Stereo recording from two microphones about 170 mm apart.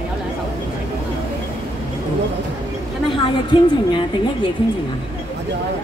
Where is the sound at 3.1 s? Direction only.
30° left (ahead or behind).